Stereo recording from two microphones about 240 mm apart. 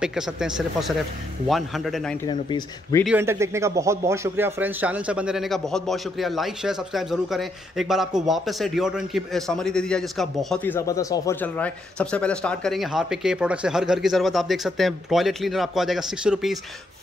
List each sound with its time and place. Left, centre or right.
0.0 s speech: centre
2.2 s speech: centre
3.1 s speech: centre